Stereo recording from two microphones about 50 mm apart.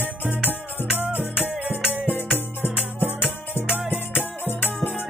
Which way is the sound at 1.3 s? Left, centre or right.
Right.